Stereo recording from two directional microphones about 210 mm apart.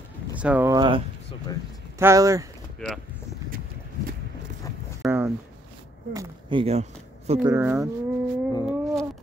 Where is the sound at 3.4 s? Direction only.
45° right (ahead or behind).